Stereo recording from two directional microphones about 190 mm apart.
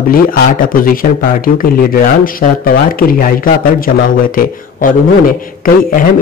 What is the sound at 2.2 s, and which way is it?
A man's voice, 50° left (ahead or behind).